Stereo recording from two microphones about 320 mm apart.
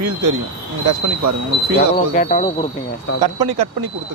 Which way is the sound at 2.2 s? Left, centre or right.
Left.